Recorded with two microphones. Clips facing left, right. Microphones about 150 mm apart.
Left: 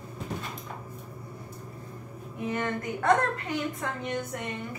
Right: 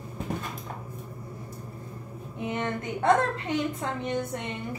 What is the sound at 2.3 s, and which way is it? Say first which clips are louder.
Speech: even; 25° right (ahead or behind).